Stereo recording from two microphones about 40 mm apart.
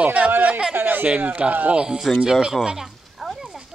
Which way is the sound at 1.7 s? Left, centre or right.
Right.